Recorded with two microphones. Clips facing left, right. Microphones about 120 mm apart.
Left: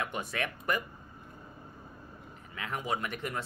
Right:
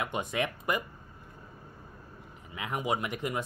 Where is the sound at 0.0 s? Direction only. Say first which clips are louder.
Right 3 dB; 20° right (ahead or behind).